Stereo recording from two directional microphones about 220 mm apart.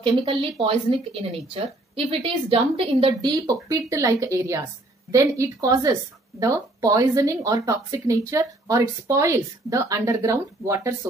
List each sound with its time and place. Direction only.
0.0 s speech: 25° right (ahead or behind)